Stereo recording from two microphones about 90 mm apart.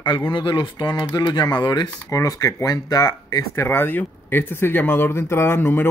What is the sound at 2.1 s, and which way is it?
Speech, 40° left (ahead or behind).